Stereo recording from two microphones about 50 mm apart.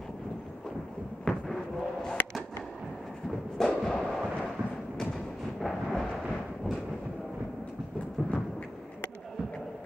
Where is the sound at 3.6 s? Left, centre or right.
Centre.